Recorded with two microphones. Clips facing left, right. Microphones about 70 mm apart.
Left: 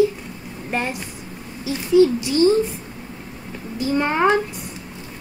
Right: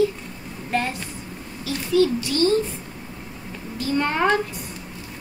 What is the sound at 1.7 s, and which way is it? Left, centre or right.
Speech, centre.